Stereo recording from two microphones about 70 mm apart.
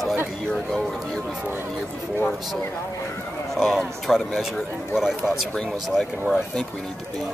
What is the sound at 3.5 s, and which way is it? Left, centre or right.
A man's voice, centre.